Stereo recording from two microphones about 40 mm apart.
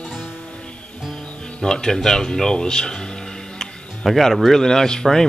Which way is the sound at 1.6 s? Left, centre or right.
Centre.